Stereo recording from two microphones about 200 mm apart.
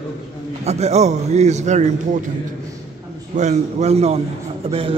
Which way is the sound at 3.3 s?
35° right (ahead or behind).